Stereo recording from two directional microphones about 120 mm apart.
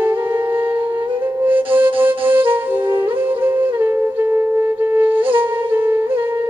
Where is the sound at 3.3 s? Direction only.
15° right (ahead or behind).